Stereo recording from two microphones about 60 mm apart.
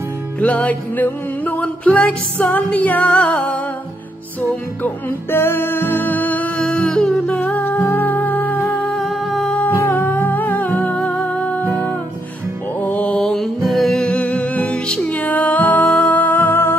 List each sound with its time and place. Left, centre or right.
0.4 s music: left
4.4 s music: left
6.6 s music: centre
7.3 s music: left
7.7 s music: left
8.0 s music: left
8.7 s humming: centre
9.6 s music: left
13.2 s music: centre
14.0 s music: left